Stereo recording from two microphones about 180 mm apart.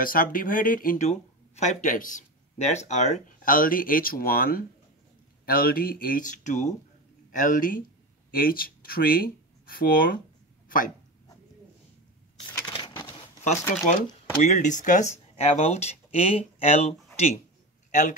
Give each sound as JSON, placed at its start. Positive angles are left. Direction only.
{"t": 0.0, "sound": "speech", "side_deg": 50}
{"t": 12.7, "sound": "a sound", "side_deg": 25}
{"t": 13.4, "sound": "speech", "side_deg": 40}